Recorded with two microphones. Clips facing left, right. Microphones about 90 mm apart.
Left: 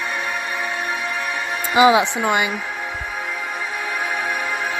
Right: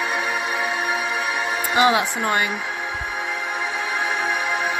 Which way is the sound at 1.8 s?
20° left (ahead or behind).